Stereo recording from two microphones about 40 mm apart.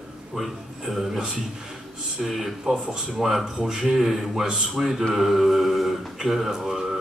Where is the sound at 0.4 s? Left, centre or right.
Centre.